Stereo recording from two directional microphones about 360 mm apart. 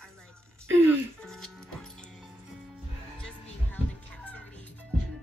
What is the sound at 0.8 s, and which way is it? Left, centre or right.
Music, centre.